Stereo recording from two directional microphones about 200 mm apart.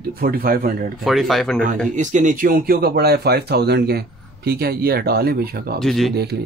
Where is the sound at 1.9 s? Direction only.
40° right (ahead or behind).